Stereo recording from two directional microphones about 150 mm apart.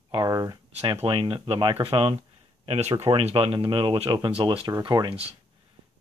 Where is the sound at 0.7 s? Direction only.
45° right (ahead or behind); by 5.1 s 30° right (ahead or behind).